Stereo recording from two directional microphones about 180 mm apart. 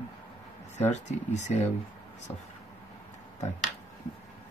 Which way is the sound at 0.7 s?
40° left (ahead or behind).